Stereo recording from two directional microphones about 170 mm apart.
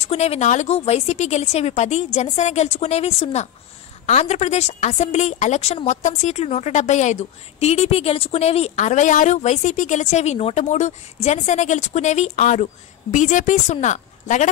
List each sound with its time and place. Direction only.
0.0 s a woman's voice: 35° left (ahead or behind)